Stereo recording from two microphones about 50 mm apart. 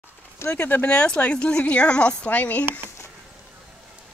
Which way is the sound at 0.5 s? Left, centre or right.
Left.